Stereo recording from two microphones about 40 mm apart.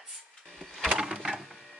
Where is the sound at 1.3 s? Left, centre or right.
Centre.